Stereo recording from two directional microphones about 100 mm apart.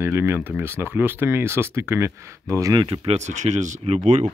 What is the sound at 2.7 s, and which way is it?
Speech, 50° right (ahead or behind).